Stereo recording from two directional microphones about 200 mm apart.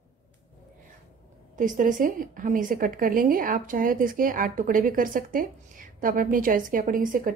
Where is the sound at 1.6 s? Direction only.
40° right (ahead or behind).